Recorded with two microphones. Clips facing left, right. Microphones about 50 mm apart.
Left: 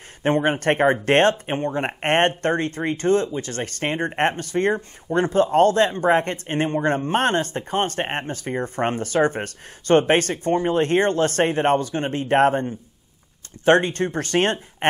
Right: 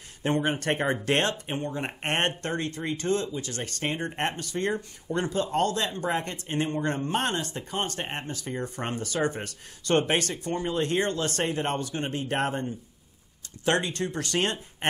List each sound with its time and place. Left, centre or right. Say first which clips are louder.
0.2 s speech: left 6 dB; left